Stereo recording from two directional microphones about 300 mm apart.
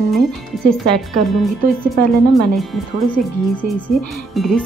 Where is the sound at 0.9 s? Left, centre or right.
Centre.